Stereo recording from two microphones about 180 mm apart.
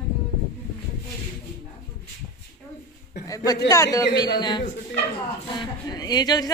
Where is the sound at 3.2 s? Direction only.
20° left (ahead or behind).